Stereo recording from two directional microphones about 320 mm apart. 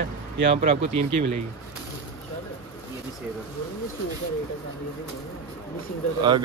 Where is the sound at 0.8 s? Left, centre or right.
Right.